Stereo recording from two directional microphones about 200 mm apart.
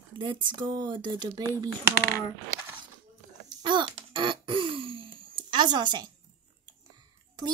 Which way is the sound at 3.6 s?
25° right (ahead or behind).